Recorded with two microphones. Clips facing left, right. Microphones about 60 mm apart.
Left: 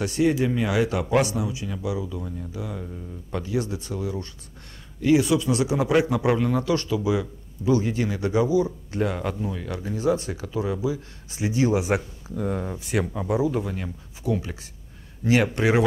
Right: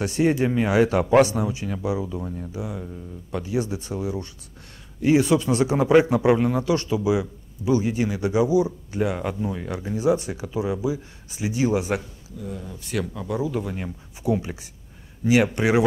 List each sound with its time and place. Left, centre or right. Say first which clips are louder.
0.0 s a man's voice: right 1 dB; right
2.5 s speech: right 1 dB; centre
2.8 s speech: right 1 dB; centre
3.4 s a man's voice: right 1 dB; right; by 12.0 s centre
12.4 s speech: left 7 dB; left
13.0 s speech: left 3 dB; left
13.4 s speech: even; centre
14.2 s speech: right 3 dB; centre